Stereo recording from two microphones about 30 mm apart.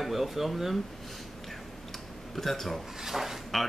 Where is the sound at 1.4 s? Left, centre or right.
Centre.